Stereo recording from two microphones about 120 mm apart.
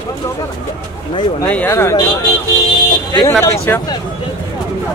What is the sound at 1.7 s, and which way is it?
Speech, 25° left (ahead or behind).